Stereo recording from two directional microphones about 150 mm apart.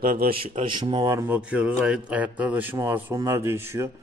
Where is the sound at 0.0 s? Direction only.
70° right (ahead or behind).